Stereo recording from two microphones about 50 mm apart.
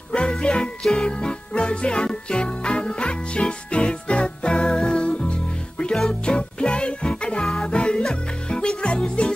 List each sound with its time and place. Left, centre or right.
0.1 s music: centre
7.4 s music: centre
7.7 s music: centre